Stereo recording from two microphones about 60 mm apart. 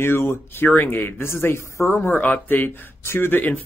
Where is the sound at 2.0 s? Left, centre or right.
Left.